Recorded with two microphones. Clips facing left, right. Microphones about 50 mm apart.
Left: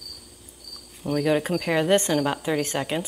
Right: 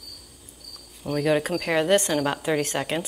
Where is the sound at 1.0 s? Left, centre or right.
Centre.